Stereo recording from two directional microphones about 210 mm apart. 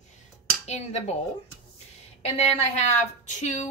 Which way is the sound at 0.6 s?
30° left (ahead or behind).